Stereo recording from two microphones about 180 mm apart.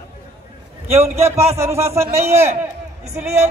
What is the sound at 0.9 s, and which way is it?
A man's voice, 15° right (ahead or behind).